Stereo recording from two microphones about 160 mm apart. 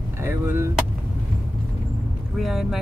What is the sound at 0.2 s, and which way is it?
Speech, 15° right (ahead or behind).